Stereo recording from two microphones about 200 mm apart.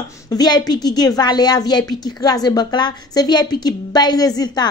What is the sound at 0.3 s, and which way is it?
A woman's voice, 20° left (ahead or behind).